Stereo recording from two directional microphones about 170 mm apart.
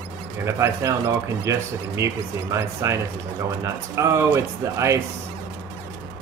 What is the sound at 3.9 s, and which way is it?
Speech, 15° right (ahead or behind).